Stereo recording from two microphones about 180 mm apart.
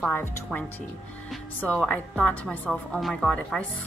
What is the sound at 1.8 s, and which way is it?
A woman's voice, 5° left (ahead or behind).